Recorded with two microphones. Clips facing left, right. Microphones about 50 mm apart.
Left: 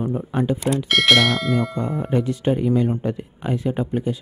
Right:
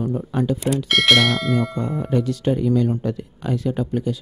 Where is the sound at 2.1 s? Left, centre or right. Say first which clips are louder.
Even; left.